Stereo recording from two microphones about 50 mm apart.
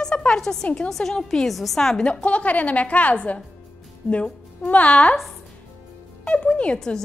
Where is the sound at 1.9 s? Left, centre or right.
Left.